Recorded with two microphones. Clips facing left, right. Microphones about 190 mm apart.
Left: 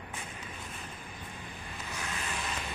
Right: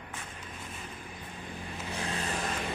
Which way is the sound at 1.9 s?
35° right (ahead or behind).